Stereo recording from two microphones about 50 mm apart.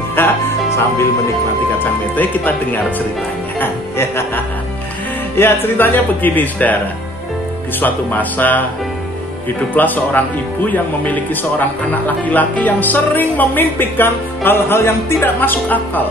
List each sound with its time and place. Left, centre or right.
0.2 s speech: left
0.7 s music: left
2.1 s speech: left
3.9 s music: left
5.3 s speech: left
7.8 s speech: left
9.8 s speech: left
14.8 s music: left
15.5 s speech: left